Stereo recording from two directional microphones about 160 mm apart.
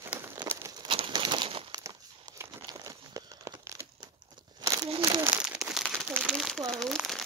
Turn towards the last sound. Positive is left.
turn(degrees=0)  # may be behind; listen again after turning